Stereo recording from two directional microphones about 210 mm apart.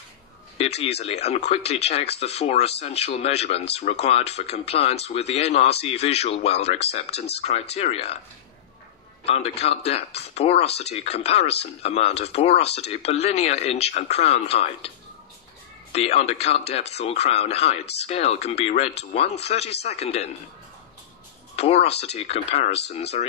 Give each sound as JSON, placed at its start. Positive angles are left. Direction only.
{"t": 0.6, "sound": "speech", "side_deg": 30}
{"t": 9.2, "sound": "speech", "side_deg": 30}
{"t": 15.9, "sound": "speech", "side_deg": 30}
{"t": 21.5, "sound": "speech", "side_deg": 30}